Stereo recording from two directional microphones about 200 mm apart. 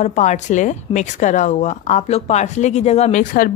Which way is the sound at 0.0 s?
35° left (ahead or behind).